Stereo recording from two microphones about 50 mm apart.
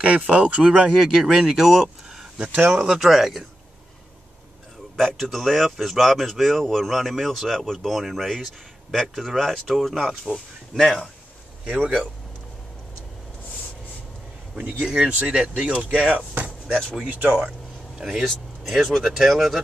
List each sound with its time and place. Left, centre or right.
0.0 s speech: right; by 3.4 s centre
4.9 s speech: centre
11.6 s speech: right
14.9 s speech: centre
16.3 s a sound: right
17.3 s a sound: right
18.0 s speech: centre